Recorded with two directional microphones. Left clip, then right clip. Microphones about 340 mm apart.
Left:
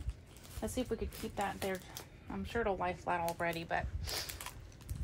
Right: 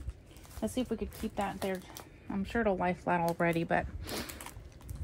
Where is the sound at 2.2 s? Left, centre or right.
Right.